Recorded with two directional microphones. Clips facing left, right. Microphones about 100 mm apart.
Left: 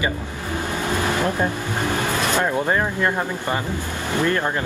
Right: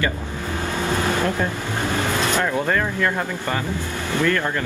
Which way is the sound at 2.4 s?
20° left (ahead or behind).